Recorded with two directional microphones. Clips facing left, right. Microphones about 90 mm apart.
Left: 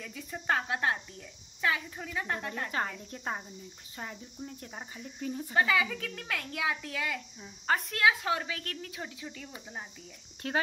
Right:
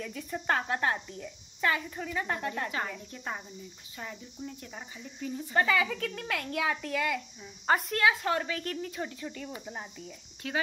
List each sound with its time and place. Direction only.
0.0 s a woman's voice: centre (ahead or behind)
0.9 s speech: 10° right (ahead or behind)
1.6 s a woman's voice: 5° left (ahead or behind)
3.1 s speech: 35° left (ahead or behind)
5.5 s a woman's voice: 5° left (ahead or behind)
7.6 s a woman's voice: 5° right (ahead or behind)
8.0 s a woman's voice: 5° left (ahead or behind)
10.4 s speech: 45° left (ahead or behind)